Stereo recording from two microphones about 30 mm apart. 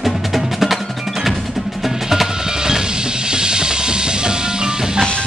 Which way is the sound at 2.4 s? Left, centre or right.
Right.